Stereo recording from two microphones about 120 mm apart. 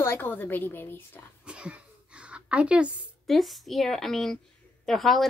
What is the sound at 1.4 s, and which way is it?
A woman's voice, 10° right (ahead or behind).